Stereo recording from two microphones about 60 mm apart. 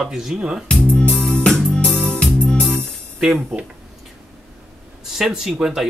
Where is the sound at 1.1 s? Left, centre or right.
Centre.